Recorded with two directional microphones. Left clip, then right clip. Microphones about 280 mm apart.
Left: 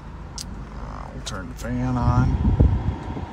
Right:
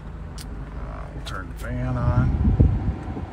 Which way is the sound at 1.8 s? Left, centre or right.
Left.